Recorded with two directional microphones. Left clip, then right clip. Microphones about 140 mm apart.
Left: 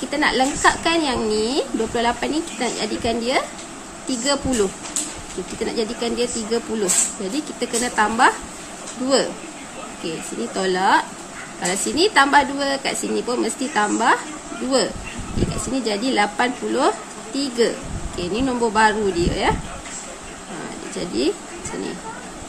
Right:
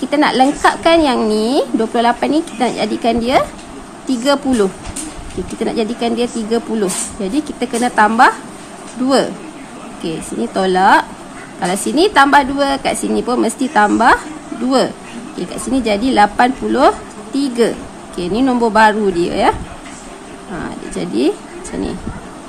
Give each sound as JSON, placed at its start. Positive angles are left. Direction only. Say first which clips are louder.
{"t": 0.1, "sound": "a woman's voice", "louder": "right 7 dB", "side_deg": -40}
{"t": 15.6, "sound": "a woman's voice", "louder": "right 9 dB", "side_deg": -45}
{"t": 20.9, "sound": "a woman's voice", "louder": "right 6 dB", "side_deg": -45}